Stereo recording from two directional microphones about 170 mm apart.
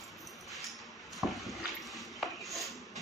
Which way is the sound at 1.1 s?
Centre (ahead or behind).